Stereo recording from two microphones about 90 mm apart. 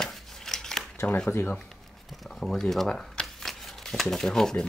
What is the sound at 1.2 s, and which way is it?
Speech, 25° left (ahead or behind).